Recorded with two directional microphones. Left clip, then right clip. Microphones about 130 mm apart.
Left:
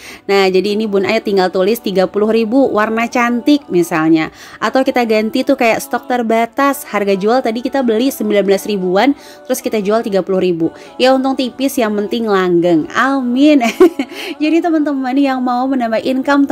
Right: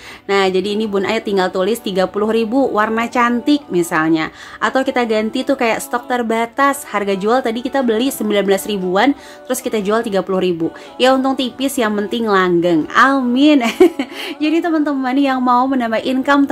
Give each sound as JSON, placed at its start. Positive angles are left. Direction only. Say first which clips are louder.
{"t": 0.3, "sound": "a woman's voice", "louder": "left 3 dB", "side_deg": 50}